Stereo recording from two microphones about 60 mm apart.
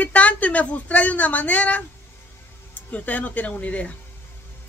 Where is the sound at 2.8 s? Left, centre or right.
Left.